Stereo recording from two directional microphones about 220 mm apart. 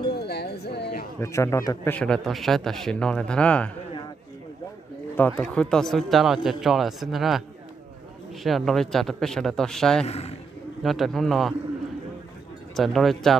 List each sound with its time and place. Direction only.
0.1 s music: 45° left (ahead or behind)
1.2 s a man's voice: 15° left (ahead or behind)
5.1 s a man's voice: 5° left (ahead or behind)
8.5 s a man's voice: centre (ahead or behind)
10.0 s a man's voice: 30° left (ahead or behind)
10.8 s a man's voice: centre (ahead or behind)
12.7 s a man's voice: centre (ahead or behind)